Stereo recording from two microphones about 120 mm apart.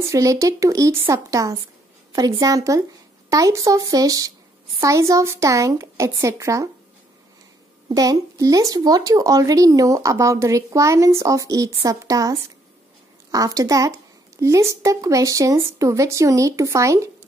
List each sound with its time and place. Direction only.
0.0 s speech: 25° right (ahead or behind)
7.9 s speech: 30° right (ahead or behind)